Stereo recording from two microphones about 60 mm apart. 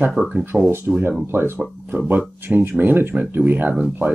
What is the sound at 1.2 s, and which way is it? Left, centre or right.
Speech, right.